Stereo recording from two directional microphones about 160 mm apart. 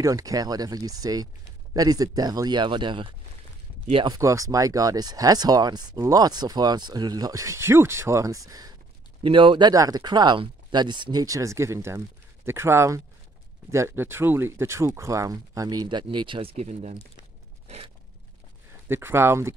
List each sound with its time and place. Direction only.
0.0 s speech: 20° right (ahead or behind); by 16.9 s 45° right (ahead or behind)
17.6 s a sound: 40° right (ahead or behind)
18.9 s speech: 15° right (ahead or behind)